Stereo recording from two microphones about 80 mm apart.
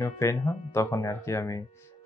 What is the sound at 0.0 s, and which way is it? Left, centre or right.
Speech, left.